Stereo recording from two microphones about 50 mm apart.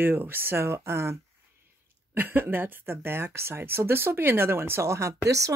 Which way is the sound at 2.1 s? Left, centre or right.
Right.